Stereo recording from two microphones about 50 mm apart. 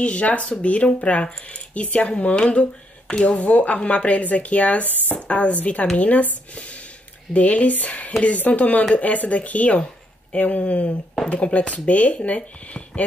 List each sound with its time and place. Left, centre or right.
0.0 s speech: left